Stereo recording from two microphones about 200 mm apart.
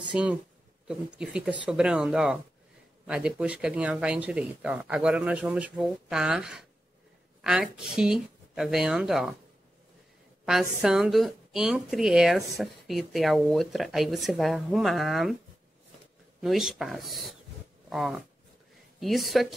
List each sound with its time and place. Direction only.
0.1 s a woman's voice: 5° right (ahead or behind)
10.4 s a woman's voice: centre (ahead or behind)
16.3 s a woman's voice: centre (ahead or behind)
17.8 s a sound: centre (ahead or behind)
18.9 s a woman's voice: centre (ahead or behind)